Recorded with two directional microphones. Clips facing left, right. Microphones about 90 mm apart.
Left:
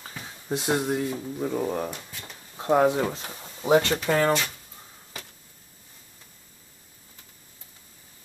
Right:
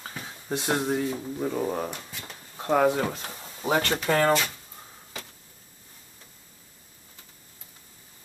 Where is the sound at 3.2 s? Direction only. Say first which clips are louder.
Left 1 dB; centre (ahead or behind).